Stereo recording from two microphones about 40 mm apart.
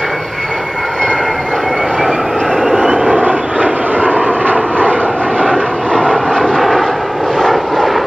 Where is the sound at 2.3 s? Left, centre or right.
Centre.